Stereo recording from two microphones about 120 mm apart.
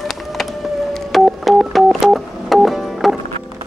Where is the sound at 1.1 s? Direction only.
Centre (ahead or behind).